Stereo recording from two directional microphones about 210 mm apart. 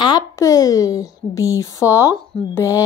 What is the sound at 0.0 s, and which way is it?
A woman's voice, 20° left (ahead or behind).